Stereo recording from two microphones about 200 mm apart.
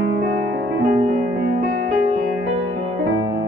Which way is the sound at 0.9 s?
40° right (ahead or behind).